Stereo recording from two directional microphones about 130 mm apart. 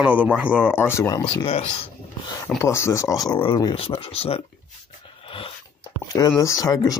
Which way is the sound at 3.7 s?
45° left (ahead or behind).